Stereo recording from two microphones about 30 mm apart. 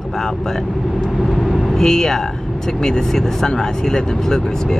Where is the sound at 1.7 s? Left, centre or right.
Centre.